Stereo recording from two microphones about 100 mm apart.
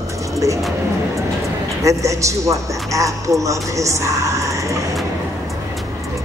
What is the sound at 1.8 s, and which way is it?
A man's voice, 30° right (ahead or behind).